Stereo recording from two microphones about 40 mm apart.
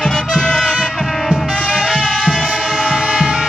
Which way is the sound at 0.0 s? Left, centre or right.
Centre.